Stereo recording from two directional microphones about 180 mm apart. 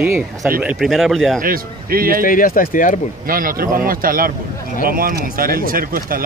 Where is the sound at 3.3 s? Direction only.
55° right (ahead or behind).